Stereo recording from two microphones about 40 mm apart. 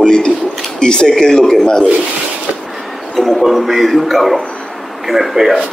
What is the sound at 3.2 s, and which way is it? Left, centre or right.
Speech, centre.